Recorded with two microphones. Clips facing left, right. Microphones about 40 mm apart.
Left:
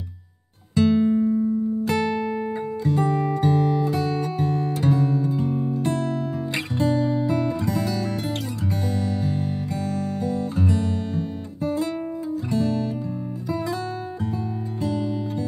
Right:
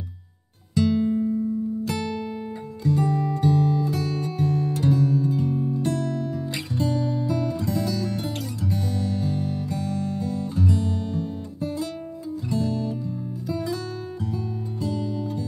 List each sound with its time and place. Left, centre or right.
0.7 s music: left
4.5 s guitar: left
5.5 s music: centre
5.8 s music: left
8.8 s music: centre
9.2 s music: left
9.8 s music: centre
10.1 s music: left
14.8 s music: left